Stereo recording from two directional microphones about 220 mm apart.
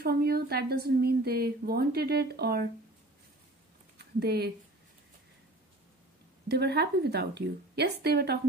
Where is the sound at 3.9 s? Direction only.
45° right (ahead or behind).